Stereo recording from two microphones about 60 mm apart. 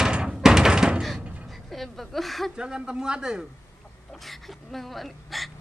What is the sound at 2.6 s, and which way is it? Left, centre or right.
Speech, centre.